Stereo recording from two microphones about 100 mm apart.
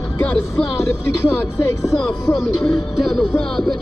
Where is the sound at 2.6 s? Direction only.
5° right (ahead or behind).